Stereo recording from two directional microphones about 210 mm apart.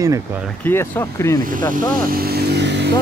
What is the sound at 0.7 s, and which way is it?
Speech, 10° left (ahead or behind).